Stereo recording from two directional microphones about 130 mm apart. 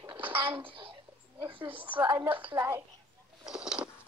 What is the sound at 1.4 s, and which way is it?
Speech, 40° right (ahead or behind).